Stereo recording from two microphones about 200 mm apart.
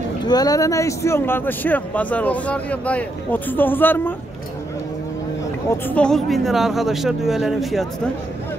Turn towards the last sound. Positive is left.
turn(degrees=0)  # may be behind; listen again after turning